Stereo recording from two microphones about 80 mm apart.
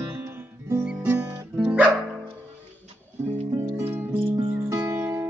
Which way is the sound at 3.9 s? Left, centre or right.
Right.